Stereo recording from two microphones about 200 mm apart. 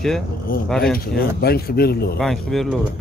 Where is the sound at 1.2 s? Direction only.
50° left (ahead or behind).